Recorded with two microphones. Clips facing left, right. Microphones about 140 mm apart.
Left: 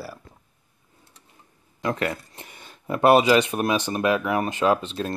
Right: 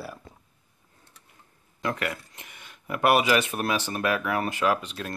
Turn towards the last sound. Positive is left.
turn(degrees=30)  # may be behind; listen again after turning